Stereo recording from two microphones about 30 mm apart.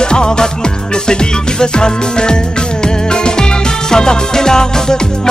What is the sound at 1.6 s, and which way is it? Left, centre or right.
Music, left.